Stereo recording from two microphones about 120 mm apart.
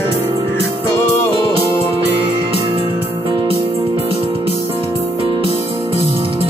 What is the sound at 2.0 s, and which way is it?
Music, 15° right (ahead or behind).